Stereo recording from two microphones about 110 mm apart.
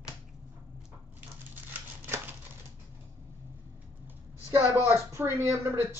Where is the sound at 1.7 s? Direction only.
20° right (ahead or behind).